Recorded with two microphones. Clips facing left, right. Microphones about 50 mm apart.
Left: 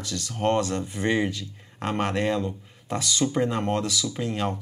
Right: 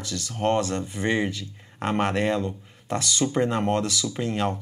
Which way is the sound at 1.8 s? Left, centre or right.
Centre.